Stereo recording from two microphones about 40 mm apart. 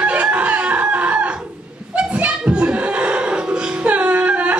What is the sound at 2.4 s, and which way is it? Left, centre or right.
Music, right.